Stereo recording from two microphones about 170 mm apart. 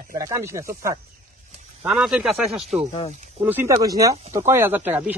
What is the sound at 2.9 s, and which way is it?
Speech, 35° left (ahead or behind).